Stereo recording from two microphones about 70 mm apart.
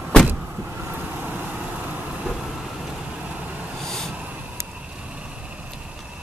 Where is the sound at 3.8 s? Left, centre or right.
Centre.